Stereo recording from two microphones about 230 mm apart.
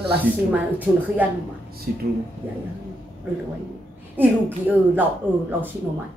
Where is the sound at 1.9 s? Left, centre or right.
Right.